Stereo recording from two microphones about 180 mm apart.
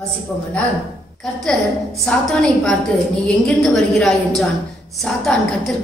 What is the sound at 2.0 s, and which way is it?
A woman's voice, 5° left (ahead or behind).